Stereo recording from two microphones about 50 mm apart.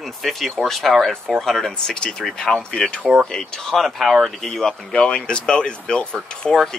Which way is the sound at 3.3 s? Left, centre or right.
Centre.